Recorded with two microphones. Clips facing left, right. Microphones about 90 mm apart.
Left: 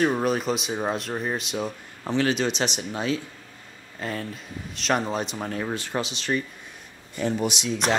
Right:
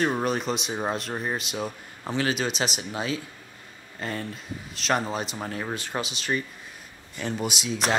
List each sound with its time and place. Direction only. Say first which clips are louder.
0.0 s speech: left 2 dB; centre (ahead or behind)
7.2 s speech: left 5 dB; 20° left (ahead or behind)
7.4 s speech: left 2 dB; 5° right (ahead or behind)